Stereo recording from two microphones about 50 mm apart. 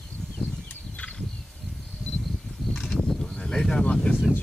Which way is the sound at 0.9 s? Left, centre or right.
Left.